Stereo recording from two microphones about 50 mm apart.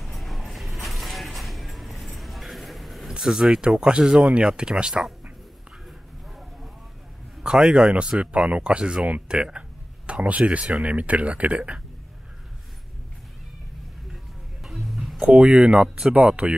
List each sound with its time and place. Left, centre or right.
0.0 s music: centre
3.2 s speech: centre
5.9 s a sound: centre
7.4 s a man's voice: centre
7.7 s speech: right
14.6 s music: centre
15.2 s speech: right